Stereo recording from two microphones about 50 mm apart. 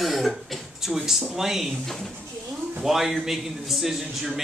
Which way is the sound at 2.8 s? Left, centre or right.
Centre.